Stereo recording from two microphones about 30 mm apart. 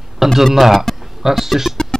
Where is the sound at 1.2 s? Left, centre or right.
Centre.